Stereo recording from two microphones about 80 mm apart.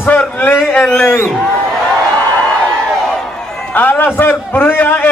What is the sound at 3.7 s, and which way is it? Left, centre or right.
Chant, left.